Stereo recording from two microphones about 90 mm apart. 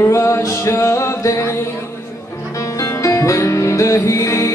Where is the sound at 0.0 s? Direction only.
30° left (ahead or behind).